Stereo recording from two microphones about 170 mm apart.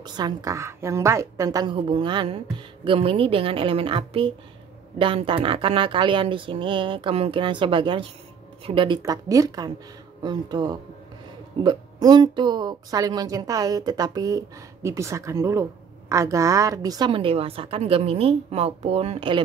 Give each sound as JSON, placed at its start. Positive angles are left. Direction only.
{"t": 0.0, "sound": "a woman's voice", "side_deg": -25}